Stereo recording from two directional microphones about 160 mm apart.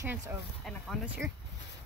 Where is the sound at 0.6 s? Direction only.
Centre (ahead or behind).